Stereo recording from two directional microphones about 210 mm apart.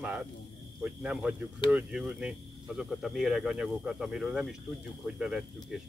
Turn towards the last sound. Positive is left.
turn(degrees=-5)  # may be behind; listen again after turning